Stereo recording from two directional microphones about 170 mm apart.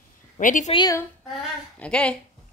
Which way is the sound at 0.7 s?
20° left (ahead or behind).